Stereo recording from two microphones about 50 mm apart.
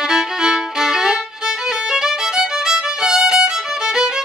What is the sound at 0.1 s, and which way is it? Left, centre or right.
Violin, centre.